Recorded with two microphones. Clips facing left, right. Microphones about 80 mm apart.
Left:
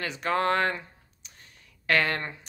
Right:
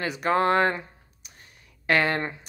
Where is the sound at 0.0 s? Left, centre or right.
Centre.